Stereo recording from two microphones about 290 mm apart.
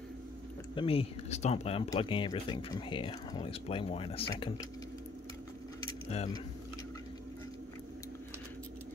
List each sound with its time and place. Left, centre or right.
0.7 s speech: centre
5.8 s keys jangling: centre